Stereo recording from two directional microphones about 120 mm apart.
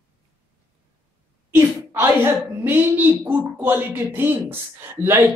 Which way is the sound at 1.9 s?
20° right (ahead or behind).